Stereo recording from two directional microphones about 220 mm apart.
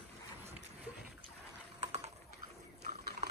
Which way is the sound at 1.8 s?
30° right (ahead or behind).